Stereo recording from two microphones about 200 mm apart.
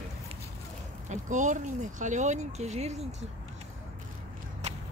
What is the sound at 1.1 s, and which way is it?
Speech, 40° right (ahead or behind).